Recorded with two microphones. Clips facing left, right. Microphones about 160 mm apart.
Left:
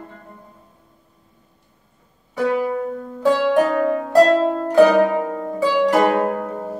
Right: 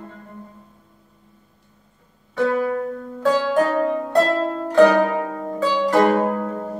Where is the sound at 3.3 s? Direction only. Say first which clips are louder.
Left 2 dB; centre (ahead or behind).